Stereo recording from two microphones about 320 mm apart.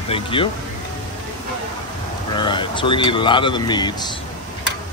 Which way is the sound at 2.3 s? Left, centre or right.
Centre.